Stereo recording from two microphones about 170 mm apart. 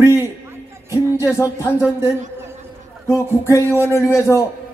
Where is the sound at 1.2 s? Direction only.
10° right (ahead or behind).